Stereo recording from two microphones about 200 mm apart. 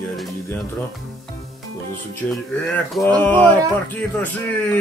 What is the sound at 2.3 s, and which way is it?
Speech, 5° left (ahead or behind).